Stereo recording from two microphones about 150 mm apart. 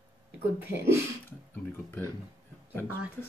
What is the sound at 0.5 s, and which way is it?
Speech, 15° right (ahead or behind).